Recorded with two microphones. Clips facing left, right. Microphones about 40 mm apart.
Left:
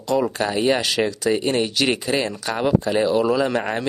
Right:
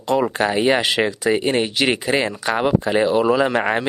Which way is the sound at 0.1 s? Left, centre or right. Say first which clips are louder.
Right 2 dB; right.